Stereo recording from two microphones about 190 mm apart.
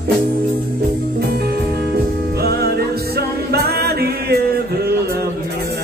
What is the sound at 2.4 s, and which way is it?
Music, 55° right (ahead or behind).